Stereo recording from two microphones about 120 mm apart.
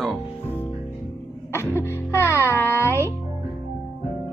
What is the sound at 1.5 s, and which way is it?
Music, 20° left (ahead or behind).